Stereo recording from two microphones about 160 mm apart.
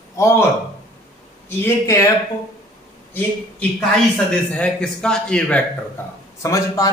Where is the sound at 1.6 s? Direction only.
20° left (ahead or behind).